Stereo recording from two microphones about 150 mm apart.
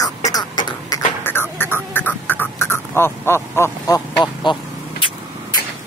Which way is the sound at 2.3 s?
15° left (ahead or behind).